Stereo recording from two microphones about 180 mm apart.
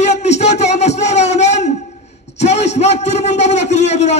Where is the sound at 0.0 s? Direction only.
40° left (ahead or behind).